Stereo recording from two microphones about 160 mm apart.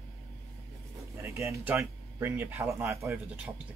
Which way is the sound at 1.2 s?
20° right (ahead or behind).